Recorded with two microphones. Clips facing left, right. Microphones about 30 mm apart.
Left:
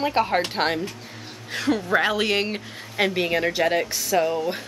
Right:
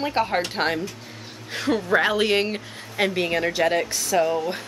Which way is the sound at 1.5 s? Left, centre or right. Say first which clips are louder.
Right 1 dB; centre.